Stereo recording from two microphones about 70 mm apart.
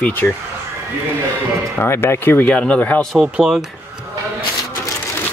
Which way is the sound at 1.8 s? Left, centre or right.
Left.